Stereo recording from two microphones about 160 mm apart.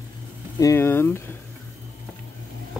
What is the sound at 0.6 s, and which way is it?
Speech, 15° left (ahead or behind).